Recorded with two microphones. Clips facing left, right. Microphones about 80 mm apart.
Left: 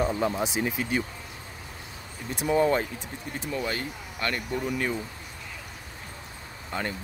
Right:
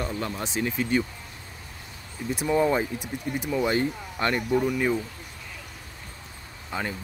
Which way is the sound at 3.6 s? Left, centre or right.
Right.